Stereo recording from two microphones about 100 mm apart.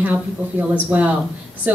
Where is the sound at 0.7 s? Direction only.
15° right (ahead or behind).